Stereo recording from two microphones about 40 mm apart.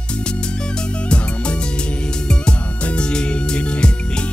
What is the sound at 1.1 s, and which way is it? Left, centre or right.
Music, left.